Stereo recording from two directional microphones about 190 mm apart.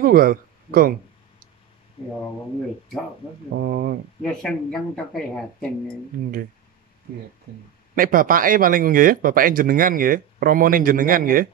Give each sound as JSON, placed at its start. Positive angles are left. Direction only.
{"t": 0.0, "sound": "speech", "side_deg": -50}
{"t": 3.5, "sound": "speech", "side_deg": -50}
{"t": 4.2, "sound": "speech", "side_deg": 5}
{"t": 7.9, "sound": "speech", "side_deg": -45}